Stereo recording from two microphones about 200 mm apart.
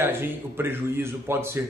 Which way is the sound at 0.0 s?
10° right (ahead or behind).